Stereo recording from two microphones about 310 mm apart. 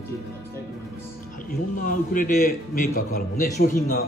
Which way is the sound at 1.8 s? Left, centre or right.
Left.